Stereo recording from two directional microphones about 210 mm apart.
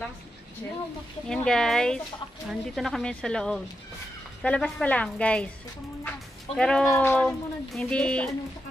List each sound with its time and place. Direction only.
1.3 s speech: 5° left (ahead or behind)